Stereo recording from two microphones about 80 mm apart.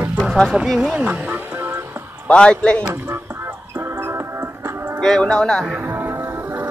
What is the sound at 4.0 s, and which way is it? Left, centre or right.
Music, right.